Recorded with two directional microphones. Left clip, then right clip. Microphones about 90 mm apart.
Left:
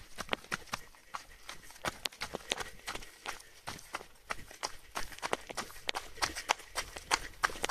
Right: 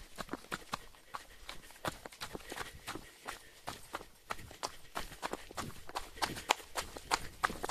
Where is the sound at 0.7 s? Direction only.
35° left (ahead or behind).